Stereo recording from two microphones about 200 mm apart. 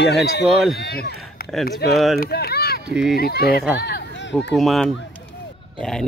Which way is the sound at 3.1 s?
50° left (ahead or behind).